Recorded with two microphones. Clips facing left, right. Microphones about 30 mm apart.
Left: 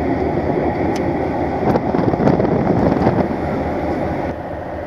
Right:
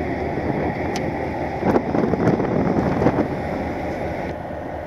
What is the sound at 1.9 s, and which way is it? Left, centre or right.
Vehicle, left.